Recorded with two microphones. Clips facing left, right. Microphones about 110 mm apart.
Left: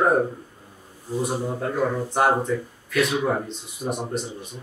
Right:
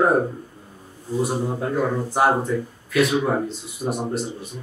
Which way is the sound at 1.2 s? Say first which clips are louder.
Even; 5° right (ahead or behind).